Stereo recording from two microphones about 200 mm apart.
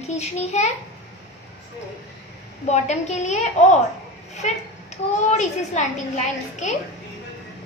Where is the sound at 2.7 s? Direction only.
35° left (ahead or behind).